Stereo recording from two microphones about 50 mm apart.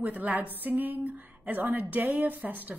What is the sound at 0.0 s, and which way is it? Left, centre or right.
A woman's voice, right.